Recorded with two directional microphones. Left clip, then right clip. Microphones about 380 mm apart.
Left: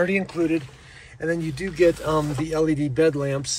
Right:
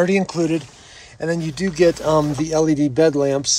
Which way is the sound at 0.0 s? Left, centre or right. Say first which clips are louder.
Right 4 dB; centre.